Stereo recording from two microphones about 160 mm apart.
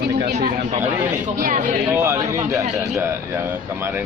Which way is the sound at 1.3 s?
55° right (ahead or behind).